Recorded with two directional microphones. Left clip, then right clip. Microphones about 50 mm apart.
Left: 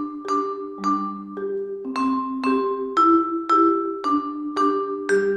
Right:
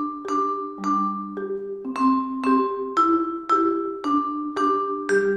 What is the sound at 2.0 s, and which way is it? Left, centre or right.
Music, right.